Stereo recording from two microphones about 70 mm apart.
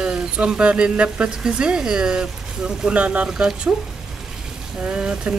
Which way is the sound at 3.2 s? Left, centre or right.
Centre.